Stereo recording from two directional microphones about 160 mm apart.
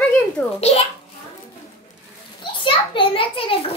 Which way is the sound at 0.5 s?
40° left (ahead or behind).